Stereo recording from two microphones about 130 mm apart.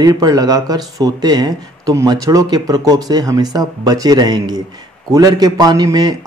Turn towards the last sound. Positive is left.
turn(degrees=-30)  # may be behind; listen again after turning